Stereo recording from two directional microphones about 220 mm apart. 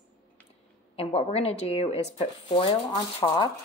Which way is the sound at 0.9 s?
25° left (ahead or behind).